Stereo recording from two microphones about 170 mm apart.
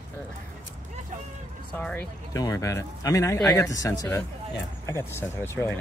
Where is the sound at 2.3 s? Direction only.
20° left (ahead or behind).